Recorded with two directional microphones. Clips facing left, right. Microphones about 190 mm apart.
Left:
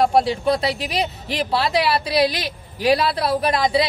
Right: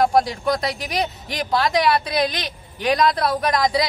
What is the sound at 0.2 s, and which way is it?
A woman's voice, 30° left (ahead or behind).